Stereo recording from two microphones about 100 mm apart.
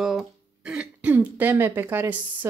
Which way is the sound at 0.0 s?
5° right (ahead or behind).